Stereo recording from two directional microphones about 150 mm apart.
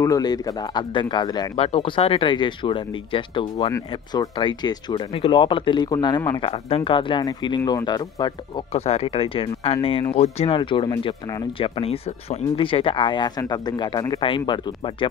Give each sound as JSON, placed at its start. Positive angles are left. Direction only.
{"t": 0.0, "sound": "speech", "side_deg": 25}
{"t": 3.7, "sound": "speech", "side_deg": 25}
{"t": 8.8, "sound": "speech", "side_deg": 40}